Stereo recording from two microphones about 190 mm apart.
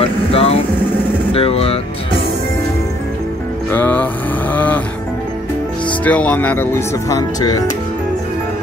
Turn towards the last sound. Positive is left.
turn(degrees=20)  # may be behind; listen again after turning